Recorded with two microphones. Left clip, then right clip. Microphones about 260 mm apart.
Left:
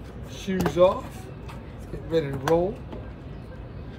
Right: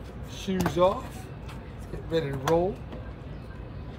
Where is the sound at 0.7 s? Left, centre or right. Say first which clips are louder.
Left 4 dB; centre.